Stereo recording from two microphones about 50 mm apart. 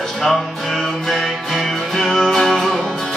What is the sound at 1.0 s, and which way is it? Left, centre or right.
Music, centre.